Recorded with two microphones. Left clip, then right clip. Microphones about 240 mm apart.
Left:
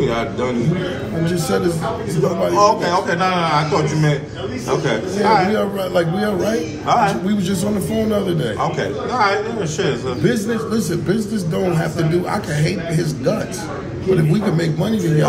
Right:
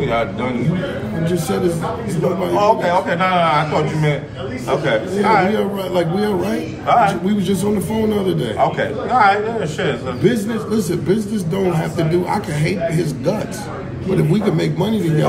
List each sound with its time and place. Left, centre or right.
2.6 s a man's voice: centre
4.8 s a man's voice: centre
5.6 s a man's voice: centre
6.9 s a man's voice: centre
8.4 s a man's voice: centre
10.2 s a man's voice: centre